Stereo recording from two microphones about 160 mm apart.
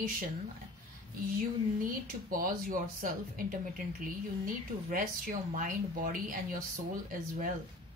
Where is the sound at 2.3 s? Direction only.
60° right (ahead or behind).